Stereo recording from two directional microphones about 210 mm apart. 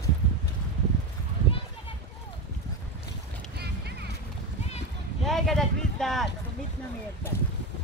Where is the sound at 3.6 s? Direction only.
50° right (ahead or behind).